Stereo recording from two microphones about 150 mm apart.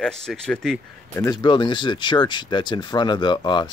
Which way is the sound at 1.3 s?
30° left (ahead or behind).